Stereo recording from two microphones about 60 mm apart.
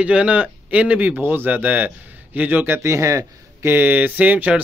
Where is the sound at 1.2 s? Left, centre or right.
Right.